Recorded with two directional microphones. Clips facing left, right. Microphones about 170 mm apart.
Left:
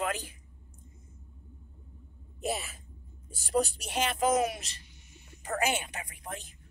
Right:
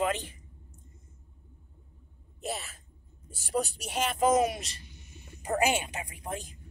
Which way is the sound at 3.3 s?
5° right (ahead or behind).